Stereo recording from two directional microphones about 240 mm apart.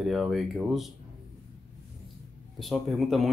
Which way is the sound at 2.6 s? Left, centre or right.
Centre.